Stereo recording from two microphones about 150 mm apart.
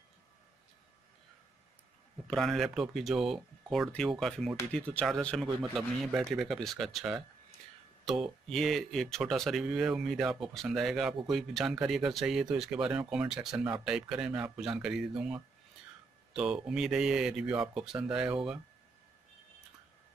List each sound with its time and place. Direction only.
2.2 s speech: centre (ahead or behind)
8.5 s speech: centre (ahead or behind)